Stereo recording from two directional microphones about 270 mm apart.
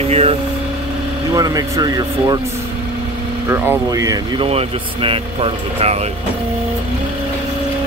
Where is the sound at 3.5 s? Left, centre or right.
Centre.